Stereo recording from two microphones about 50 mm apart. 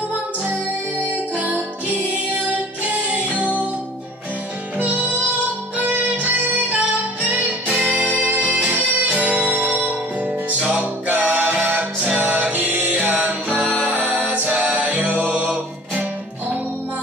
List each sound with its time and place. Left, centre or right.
1.1 s music: right
4.7 s music: right
13.8 s a capella: right
14.3 s music: right